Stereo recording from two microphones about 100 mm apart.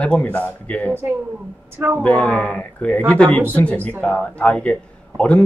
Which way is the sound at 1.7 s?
20° right (ahead or behind).